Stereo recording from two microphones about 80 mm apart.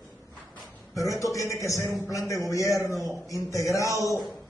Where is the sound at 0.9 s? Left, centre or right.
Left.